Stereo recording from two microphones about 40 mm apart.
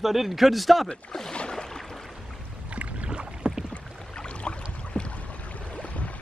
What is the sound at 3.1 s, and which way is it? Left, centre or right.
Rowboat, right.